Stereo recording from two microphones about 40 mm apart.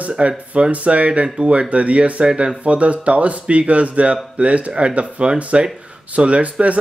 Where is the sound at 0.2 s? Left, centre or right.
Right.